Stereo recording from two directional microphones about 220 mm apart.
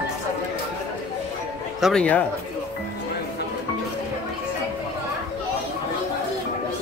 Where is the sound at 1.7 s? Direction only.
Centre (ahead or behind).